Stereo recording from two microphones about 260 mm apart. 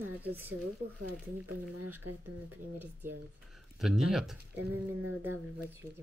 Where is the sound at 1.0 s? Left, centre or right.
Right.